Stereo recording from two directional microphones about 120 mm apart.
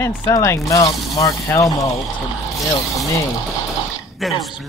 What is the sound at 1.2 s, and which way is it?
Speech, 30° left (ahead or behind).